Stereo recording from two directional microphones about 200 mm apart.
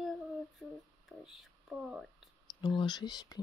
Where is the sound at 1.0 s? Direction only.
5° right (ahead or behind).